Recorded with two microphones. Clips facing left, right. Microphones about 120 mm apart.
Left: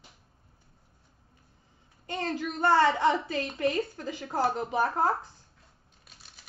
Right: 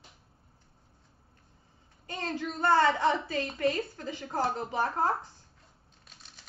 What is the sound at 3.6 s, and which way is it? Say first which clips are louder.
A woman's voice: left 2 dB; 20° left (ahead or behind).